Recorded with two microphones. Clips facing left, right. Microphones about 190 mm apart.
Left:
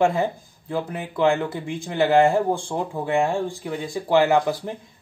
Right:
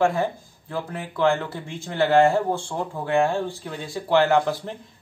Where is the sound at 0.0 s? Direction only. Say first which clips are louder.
Left 1 dB; 20° left (ahead or behind).